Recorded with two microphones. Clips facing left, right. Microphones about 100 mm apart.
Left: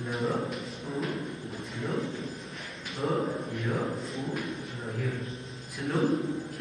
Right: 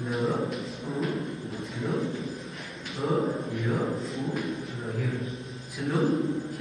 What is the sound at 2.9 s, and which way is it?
A man's voice, centre (ahead or behind).